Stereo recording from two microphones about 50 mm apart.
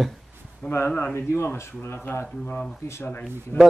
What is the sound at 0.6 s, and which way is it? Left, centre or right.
Speech, left.